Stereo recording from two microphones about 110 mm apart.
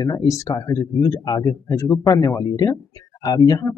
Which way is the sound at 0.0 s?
35° left (ahead or behind).